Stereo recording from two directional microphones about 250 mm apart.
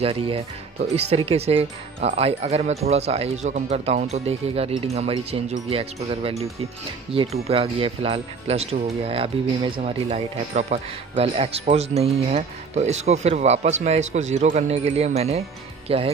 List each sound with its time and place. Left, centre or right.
0.0 s speech: right